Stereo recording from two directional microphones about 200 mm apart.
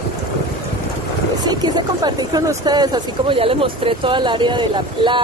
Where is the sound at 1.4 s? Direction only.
20° right (ahead or behind).